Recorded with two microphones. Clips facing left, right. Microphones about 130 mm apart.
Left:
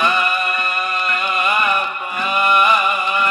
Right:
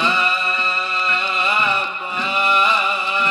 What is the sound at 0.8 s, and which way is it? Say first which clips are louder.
Music: left 1 dB; 30° right (ahead or behind).